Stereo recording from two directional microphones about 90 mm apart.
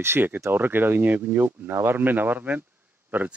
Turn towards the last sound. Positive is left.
turn(degrees=-20)  # may be behind; listen again after turning